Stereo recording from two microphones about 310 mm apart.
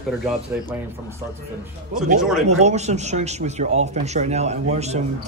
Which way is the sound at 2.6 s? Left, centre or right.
Right.